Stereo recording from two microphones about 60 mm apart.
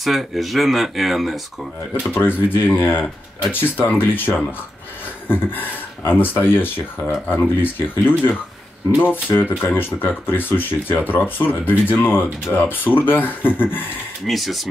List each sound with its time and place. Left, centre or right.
0.0 s speech: centre
2.1 s speech: left
5.3 s speech: left
14.2 s speech: centre